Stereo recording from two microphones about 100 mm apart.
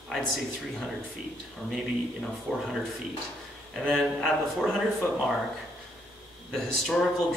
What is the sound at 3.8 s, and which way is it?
Speech, centre (ahead or behind).